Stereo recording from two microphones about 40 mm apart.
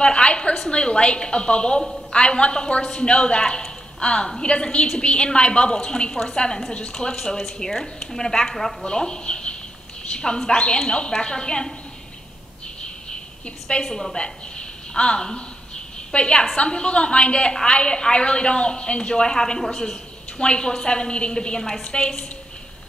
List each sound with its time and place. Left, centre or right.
0.0 s a woman's voice: left
13.8 s a woman's voice: centre
14.1 s a woman's voice: left